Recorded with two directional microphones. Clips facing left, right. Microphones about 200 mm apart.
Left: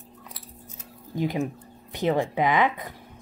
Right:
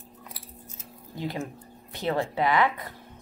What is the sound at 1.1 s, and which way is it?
Speech, 15° left (ahead or behind).